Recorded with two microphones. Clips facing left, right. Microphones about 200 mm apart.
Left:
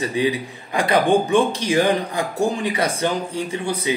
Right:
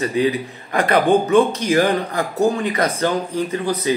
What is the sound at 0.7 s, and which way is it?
A man's voice, 10° left (ahead or behind).